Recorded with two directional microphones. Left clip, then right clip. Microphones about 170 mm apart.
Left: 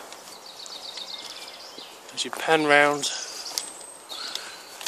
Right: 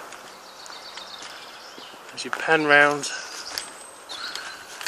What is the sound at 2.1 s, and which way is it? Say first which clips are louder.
Speech: right 1 dB; 20° left (ahead or behind).